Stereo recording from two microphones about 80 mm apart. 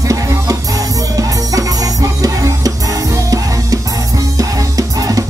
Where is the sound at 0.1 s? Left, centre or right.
Right.